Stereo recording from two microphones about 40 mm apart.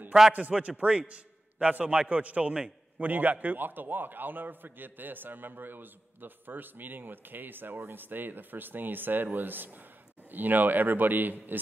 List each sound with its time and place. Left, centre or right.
0.1 s a man's voice: centre
0.5 s a man's voice: right
3.0 s a man's voice: right